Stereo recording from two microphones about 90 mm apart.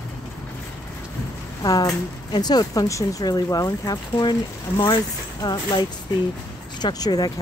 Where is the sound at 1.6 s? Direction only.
45° left (ahead or behind).